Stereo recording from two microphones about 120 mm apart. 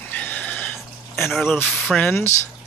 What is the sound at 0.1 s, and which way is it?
Neigh, 10° left (ahead or behind).